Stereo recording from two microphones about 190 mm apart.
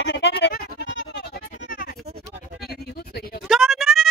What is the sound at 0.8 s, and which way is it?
Music, 70° left (ahead or behind).